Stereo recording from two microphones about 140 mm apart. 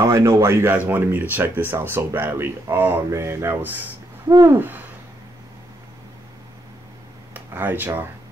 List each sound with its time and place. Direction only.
0.0 s speech: 20° right (ahead or behind)
7.3 s speech: 15° right (ahead or behind)